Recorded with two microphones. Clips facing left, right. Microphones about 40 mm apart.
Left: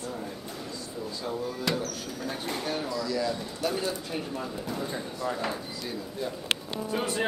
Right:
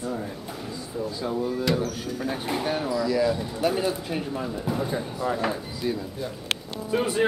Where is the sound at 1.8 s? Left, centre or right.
Centre.